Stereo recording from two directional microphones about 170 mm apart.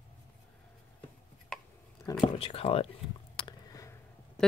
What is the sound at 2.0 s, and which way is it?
Whispering, 20° left (ahead or behind).